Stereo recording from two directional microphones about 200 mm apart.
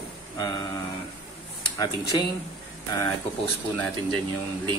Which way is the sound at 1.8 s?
20° left (ahead or behind).